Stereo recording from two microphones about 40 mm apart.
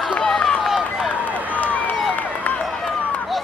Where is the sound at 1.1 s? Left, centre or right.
Right.